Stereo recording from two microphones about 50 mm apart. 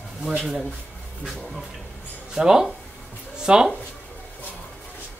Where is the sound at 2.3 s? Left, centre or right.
Centre.